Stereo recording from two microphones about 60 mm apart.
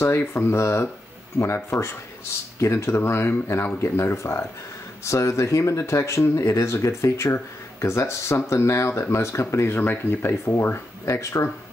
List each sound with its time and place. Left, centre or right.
0.0 s speech: left
9.8 s speech: left
10.5 s speech: left